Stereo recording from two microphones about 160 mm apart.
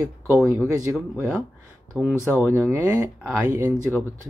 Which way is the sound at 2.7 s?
20° right (ahead or behind).